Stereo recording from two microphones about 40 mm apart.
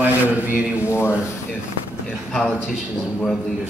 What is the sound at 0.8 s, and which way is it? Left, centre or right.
Speech, left.